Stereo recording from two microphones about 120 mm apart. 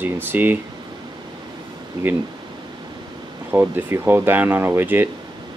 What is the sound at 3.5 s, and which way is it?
Speech, 20° right (ahead or behind).